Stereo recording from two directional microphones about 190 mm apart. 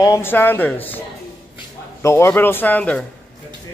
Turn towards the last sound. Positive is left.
turn(degrees=5)  # may be behind; listen again after turning